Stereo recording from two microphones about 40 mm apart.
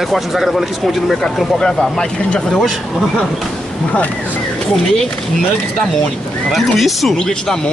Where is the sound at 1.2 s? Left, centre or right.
Centre.